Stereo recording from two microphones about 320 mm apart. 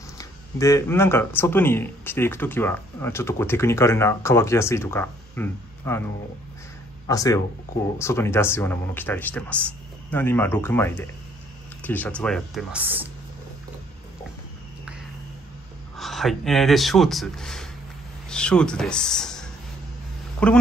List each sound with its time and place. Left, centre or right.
0.2 s speech: centre
7.1 s speech: centre
16.0 s speech: centre